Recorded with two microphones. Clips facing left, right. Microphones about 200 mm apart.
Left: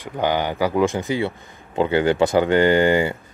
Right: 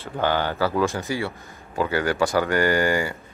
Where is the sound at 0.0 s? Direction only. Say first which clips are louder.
Left 2 dB; 15° left (ahead or behind).